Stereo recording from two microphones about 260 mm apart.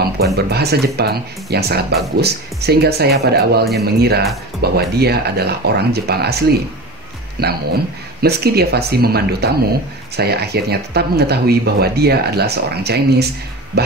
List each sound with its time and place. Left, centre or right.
0.2 s speech: right